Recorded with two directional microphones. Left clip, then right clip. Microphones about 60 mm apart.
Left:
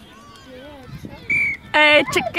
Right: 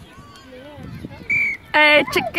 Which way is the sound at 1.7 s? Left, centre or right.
Left.